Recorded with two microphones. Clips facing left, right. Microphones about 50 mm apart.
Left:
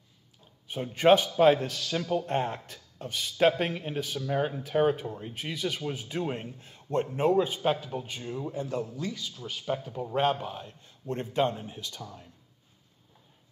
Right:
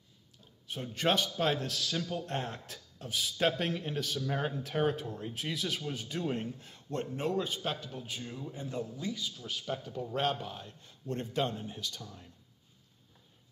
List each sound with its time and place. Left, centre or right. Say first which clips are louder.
0.7 s a man's voice: left 10 dB; centre
3.3 s a man's voice: left 7 dB; centre
5.9 s a man's voice: left 3 dB; centre
8.9 s speech: left 2 dB; centre
9.3 s a man's voice: left 5 dB; centre